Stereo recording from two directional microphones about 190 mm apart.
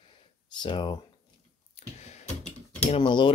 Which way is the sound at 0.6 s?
25° left (ahead or behind).